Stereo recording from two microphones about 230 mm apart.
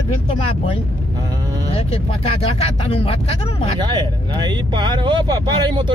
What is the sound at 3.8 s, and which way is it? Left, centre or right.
Speech, centre.